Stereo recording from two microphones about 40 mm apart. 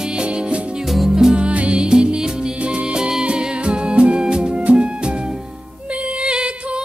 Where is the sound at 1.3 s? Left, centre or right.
Right.